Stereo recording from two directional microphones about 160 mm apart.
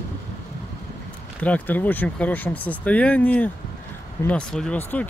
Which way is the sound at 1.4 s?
10° left (ahead or behind).